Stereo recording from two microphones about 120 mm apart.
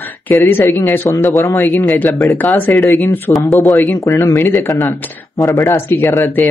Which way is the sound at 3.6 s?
25° left (ahead or behind).